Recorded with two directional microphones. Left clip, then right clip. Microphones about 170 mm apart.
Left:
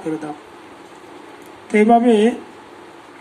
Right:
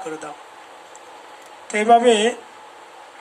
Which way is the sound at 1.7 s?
65° right (ahead or behind).